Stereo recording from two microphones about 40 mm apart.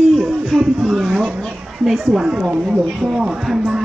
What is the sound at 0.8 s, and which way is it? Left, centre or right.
Speech, centre.